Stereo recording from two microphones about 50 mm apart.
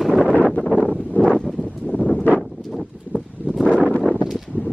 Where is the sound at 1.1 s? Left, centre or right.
Centre.